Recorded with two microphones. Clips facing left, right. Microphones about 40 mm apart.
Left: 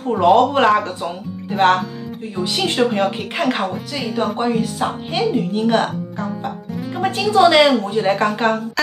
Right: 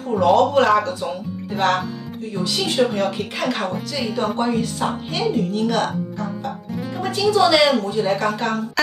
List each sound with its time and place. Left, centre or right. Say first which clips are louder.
0.2 s a woman's voice: left 2 dB; left
4.1 s speech: left 2 dB; centre
5.7 s a woman's voice: left 3 dB; left